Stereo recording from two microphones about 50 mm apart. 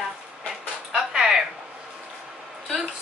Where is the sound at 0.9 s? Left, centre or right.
Centre.